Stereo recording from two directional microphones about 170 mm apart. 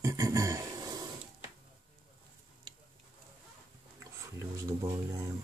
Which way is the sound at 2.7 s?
30° right (ahead or behind).